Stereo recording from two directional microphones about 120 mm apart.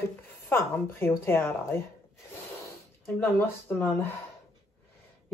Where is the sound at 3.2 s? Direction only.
15° left (ahead or behind).